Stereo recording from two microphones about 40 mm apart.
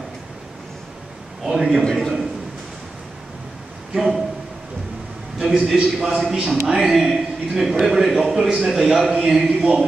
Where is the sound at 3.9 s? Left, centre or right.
Centre.